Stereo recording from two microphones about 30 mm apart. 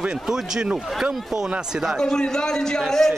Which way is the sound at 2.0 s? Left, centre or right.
Left.